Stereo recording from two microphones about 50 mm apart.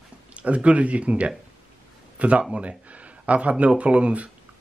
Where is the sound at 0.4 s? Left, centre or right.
Right.